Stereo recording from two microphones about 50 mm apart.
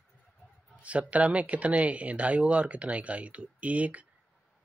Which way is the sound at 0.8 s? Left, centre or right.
Right.